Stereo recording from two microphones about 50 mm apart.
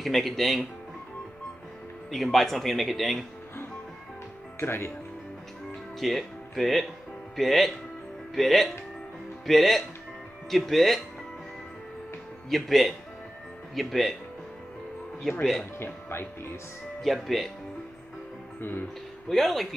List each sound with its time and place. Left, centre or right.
0.0 s speech: centre
2.0 s speech: centre
4.6 s speech: left
5.9 s speech: centre
12.4 s speech: centre
15.8 s speech: left
17.0 s speech: centre
18.6 s speech: left
19.2 s speech: centre